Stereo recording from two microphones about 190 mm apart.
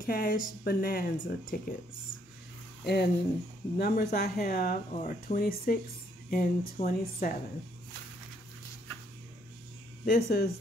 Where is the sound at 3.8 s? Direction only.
50° left (ahead or behind).